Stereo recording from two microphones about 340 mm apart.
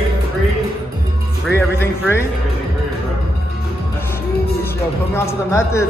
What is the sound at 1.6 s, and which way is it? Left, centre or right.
Speech, centre.